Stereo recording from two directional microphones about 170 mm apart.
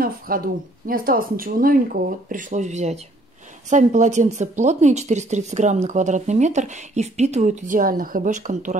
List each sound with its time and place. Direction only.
0.3 s speech: 55° right (ahead or behind)